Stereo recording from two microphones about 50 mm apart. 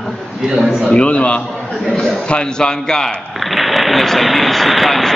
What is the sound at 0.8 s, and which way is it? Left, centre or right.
Speech, left.